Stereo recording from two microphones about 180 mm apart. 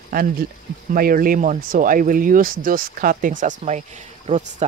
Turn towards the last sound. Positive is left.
turn(degrees=-40)  # may be behind; listen again after turning